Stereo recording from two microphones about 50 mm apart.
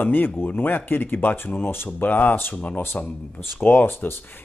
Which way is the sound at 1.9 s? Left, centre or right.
Left.